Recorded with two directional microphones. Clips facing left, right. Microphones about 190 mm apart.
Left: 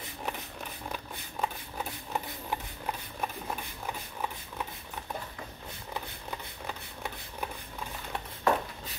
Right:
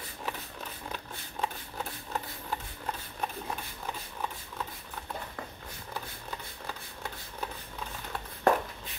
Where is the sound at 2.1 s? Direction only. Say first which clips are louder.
Left 2 dB; 10° left (ahead or behind).